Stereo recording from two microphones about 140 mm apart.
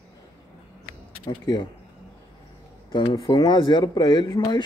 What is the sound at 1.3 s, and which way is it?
Speech, 30° left (ahead or behind).